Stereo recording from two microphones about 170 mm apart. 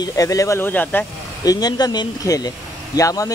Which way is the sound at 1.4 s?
25° left (ahead or behind).